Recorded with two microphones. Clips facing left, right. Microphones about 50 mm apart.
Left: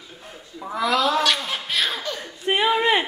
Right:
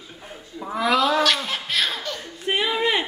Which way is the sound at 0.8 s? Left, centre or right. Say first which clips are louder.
Right 1 dB; right.